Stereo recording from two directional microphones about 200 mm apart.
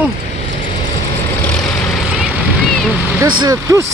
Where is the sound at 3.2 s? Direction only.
20° right (ahead or behind).